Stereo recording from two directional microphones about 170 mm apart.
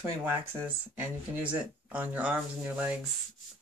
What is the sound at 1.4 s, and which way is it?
Speech, 10° right (ahead or behind).